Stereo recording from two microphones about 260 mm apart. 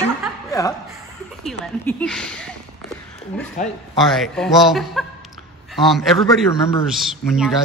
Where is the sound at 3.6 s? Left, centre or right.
Left.